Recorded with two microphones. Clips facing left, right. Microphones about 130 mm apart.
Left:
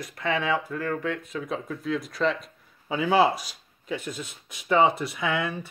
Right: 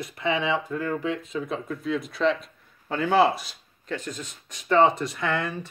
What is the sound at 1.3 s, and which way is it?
A man's voice, centre (ahead or behind).